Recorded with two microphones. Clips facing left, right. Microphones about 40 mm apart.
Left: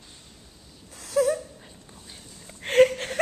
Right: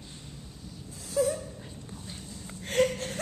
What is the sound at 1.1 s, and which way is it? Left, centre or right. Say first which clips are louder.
Dog: left 4 dB; left.